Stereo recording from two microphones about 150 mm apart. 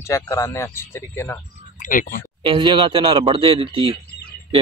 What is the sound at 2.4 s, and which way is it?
Speech, 30° right (ahead or behind).